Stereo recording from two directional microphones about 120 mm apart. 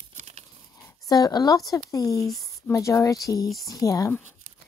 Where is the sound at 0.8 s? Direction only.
30° left (ahead or behind).